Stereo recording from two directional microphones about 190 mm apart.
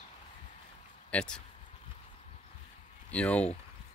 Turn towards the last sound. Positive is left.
turn(degrees=5)  # may be behind; listen again after turning